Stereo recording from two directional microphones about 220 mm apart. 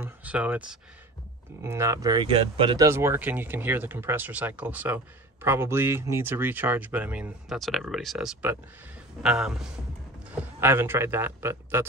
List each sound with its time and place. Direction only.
0.0 s a man's voice: 5° right (ahead or behind)